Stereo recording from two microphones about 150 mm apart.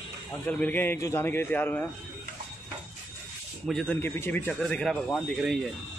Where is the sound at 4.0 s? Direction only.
15° left (ahead or behind); by 5.5 s centre (ahead or behind).